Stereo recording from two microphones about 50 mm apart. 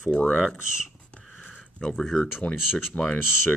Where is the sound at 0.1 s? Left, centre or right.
Centre.